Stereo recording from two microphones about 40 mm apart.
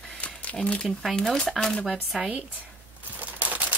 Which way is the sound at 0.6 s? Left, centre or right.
Left.